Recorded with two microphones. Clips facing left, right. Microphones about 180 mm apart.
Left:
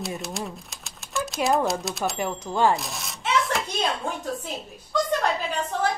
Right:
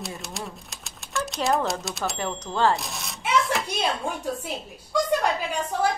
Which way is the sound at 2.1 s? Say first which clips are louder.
Left 2 dB; 10° left (ahead or behind).